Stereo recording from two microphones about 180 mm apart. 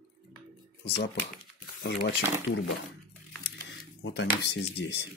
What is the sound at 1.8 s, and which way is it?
Speech, 55° left (ahead or behind).